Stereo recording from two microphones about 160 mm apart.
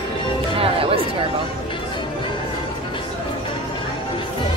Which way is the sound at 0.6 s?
35° right (ahead or behind).